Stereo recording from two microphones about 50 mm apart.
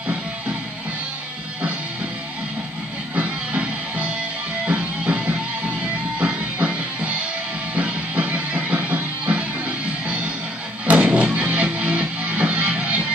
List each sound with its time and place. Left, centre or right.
3.2 s music: right